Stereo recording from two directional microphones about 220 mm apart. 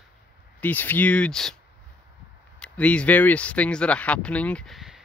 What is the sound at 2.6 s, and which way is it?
Speech, 5° left (ahead or behind).